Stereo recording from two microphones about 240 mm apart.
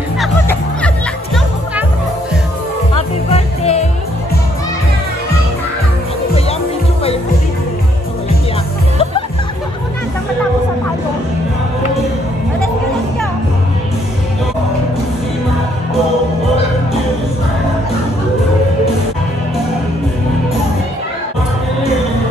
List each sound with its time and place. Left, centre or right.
0.2 s music: centre
3.3 s music: left